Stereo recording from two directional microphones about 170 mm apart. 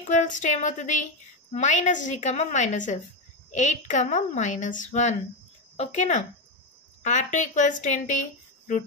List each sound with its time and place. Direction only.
0.0 s a woman's voice: 45° left (ahead or behind)